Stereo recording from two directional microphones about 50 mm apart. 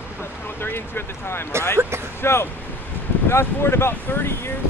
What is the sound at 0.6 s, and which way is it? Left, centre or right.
Speech, left.